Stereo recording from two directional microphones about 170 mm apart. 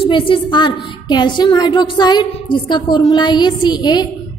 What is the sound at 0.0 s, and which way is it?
A woman's voice, 30° left (ahead or behind).